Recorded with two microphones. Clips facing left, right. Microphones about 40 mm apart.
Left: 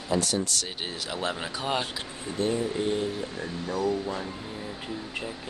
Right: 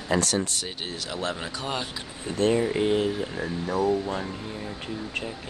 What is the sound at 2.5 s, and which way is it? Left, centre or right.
Speech, right.